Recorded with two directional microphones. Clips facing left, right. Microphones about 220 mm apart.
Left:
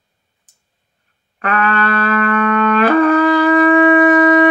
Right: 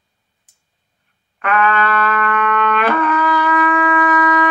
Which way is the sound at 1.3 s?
40° left (ahead or behind).